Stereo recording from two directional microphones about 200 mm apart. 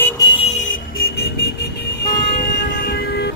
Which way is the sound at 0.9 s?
50° left (ahead or behind).